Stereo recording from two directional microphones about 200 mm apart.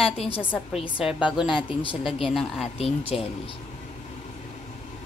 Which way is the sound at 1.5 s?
25° left (ahead or behind).